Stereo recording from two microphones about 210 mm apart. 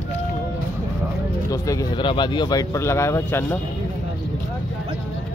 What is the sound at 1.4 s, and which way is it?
Speech, 15° left (ahead or behind).